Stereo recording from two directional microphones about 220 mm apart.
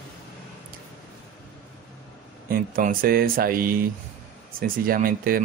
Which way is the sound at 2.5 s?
40° right (ahead or behind).